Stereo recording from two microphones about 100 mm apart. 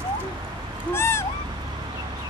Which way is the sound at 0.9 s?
25° left (ahead or behind).